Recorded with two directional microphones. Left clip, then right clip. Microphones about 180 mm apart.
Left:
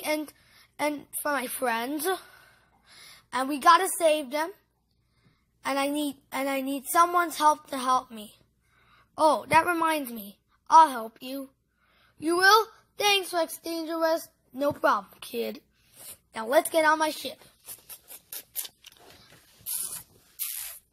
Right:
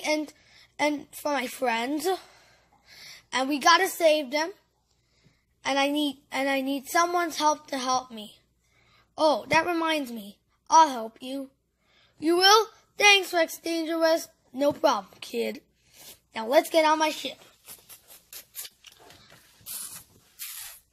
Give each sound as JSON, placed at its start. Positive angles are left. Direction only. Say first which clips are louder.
{"t": 0.0, "sound": "a woman's voice", "louder": "right 2 dB", "side_deg": -5}
{"t": 5.6, "sound": "a woman's voice", "louder": "right 3 dB", "side_deg": 0}
{"t": 18.3, "sound": "scissors", "louder": "left 2 dB", "side_deg": 40}